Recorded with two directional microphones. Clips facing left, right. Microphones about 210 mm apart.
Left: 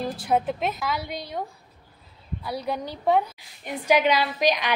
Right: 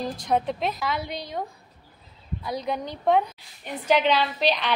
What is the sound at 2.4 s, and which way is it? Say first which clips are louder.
A woman's voice: even; 5° left (ahead or behind).